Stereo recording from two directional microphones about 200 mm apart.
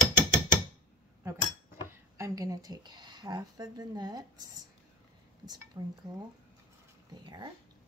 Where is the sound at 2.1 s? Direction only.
15° right (ahead or behind).